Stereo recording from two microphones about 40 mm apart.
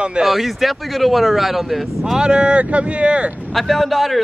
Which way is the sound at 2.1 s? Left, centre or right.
Right.